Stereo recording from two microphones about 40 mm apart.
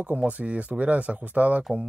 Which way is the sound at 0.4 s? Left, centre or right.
Right.